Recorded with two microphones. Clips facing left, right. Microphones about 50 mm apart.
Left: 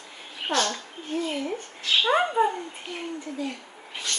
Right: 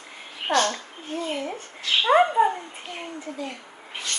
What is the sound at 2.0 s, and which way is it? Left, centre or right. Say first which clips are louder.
Speech: right 6 dB; centre.